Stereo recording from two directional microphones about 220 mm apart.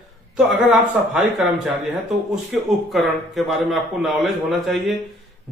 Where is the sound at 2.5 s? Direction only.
Centre (ahead or behind).